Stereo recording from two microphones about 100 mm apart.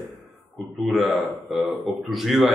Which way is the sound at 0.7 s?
Centre (ahead or behind).